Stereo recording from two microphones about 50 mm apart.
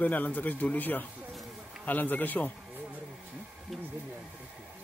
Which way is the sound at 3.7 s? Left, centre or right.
Centre.